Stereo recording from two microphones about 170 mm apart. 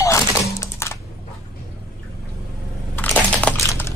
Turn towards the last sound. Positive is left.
turn(degrees=10)  # may be behind; listen again after turning